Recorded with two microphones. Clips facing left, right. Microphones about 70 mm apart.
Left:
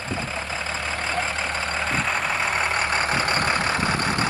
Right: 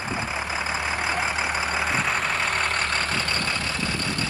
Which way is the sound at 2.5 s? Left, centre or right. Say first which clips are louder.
Left 2 dB; centre.